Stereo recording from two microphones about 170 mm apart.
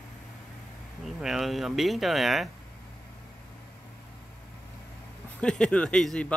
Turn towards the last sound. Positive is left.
turn(degrees=5)  # may be behind; listen again after turning